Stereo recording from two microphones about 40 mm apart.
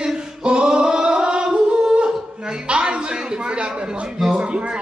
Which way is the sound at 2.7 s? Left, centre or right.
Right.